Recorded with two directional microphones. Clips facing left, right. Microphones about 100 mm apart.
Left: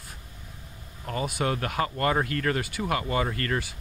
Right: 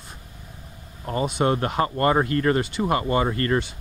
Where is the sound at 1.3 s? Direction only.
35° right (ahead or behind).